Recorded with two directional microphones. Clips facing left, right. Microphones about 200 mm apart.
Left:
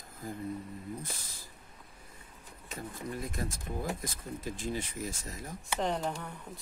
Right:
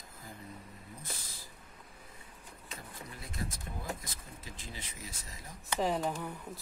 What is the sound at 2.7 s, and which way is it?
Speech, 45° left (ahead or behind).